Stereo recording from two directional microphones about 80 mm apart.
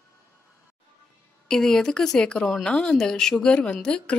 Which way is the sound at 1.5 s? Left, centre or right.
Centre.